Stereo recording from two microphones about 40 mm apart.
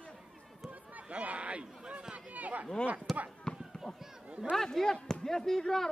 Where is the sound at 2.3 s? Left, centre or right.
Right.